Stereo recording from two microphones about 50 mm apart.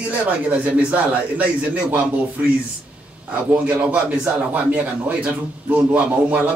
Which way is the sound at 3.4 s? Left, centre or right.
Right.